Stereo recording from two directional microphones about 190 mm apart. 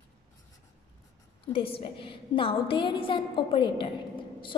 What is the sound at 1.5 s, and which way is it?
A woman's voice, 30° left (ahead or behind).